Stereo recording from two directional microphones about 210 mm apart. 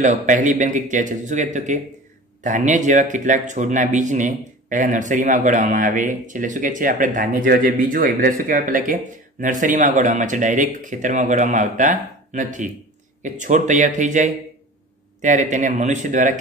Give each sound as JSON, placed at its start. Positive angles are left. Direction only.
{"t": 0.0, "sound": "speech", "side_deg": -35}